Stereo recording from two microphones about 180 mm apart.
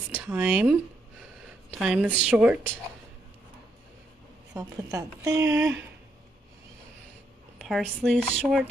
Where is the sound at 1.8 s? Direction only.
5° right (ahead or behind).